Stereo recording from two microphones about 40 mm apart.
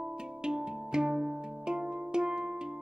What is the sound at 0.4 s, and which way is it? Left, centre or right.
Music, centre.